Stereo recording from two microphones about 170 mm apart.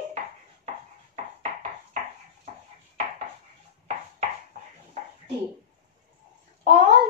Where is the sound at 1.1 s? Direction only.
40° right (ahead or behind).